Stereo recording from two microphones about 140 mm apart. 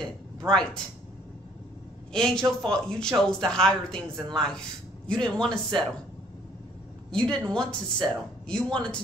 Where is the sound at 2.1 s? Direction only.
5° left (ahead or behind).